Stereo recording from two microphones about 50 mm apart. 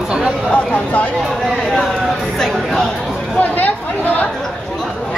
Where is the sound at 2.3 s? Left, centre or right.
Centre.